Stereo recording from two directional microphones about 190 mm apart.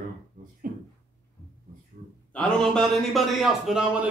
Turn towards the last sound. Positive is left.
turn(degrees=0)  # may be behind; listen again after turning